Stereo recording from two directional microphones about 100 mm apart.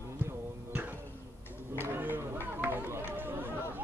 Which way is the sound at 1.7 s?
20° right (ahead or behind).